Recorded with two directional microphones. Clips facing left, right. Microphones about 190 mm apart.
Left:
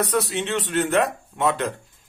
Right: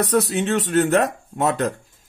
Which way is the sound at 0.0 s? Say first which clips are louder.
Right 4 dB; 45° right (ahead or behind).